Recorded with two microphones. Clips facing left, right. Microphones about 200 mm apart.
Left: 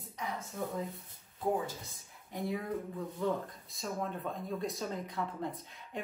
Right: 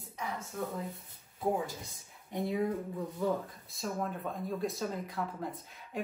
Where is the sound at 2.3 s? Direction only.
20° right (ahead or behind).